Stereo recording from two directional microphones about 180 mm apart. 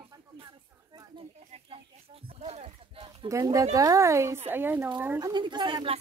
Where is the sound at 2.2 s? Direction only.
35° right (ahead or behind).